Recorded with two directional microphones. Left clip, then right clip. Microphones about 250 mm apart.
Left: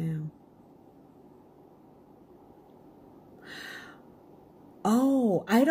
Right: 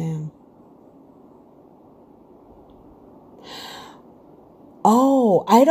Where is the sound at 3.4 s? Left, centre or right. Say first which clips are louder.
Right 6 dB; centre.